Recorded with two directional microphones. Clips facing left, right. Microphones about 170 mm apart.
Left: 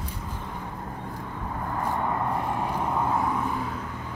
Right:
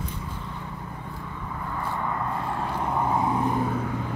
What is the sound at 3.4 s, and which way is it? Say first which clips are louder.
Vehicle: right 5 dB; 45° right (ahead or behind).